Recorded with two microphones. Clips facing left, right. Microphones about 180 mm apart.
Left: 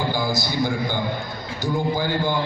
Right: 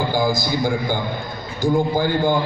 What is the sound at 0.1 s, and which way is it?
A man's voice, 50° right (ahead or behind).